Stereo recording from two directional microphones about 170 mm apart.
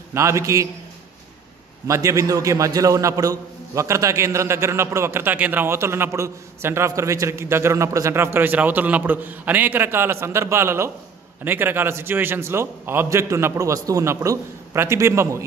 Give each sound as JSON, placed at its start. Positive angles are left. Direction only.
{"t": 0.1, "sound": "a man's voice", "side_deg": -15}
{"t": 1.9, "sound": "a man's voice", "side_deg": -20}